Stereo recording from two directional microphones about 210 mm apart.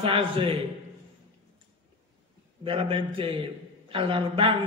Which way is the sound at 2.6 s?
25° right (ahead or behind).